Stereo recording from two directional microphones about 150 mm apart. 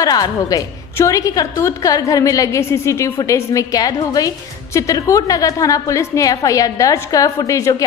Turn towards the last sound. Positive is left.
turn(degrees=20)  # may be behind; listen again after turning